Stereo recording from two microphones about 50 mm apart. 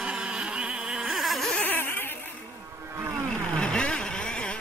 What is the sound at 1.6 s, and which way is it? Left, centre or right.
Mosquito, left.